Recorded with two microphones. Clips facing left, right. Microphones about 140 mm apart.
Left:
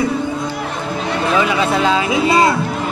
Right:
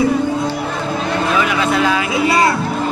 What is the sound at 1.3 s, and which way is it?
Speech, 25° left (ahead or behind).